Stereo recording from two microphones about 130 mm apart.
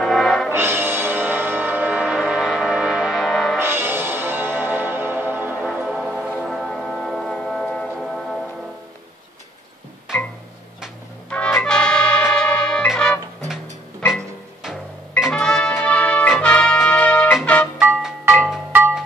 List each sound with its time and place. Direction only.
0.0 s music: centre (ahead or behind)
0.5 s music: 20° right (ahead or behind); by 3.5 s centre (ahead or behind)
3.5 s music: 20° right (ahead or behind); by 8.4 s 5° left (ahead or behind)
11.2 s music: 10° left (ahead or behind)
17.7 s music: 5° right (ahead or behind)